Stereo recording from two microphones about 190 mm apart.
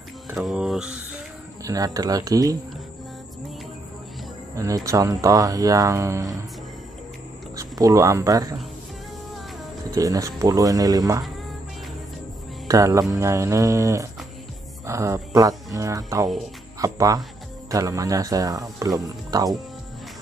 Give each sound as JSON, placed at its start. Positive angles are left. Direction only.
{"t": 0.4, "sound": "mantra", "side_deg": 0}
{"t": 1.6, "sound": "speech", "side_deg": -20}
{"t": 4.6, "sound": "speech", "side_deg": -15}
{"t": 7.5, "sound": "speech", "side_deg": -20}
{"t": 9.9, "sound": "speech", "side_deg": -15}
{"t": 12.6, "sound": "speech", "side_deg": -15}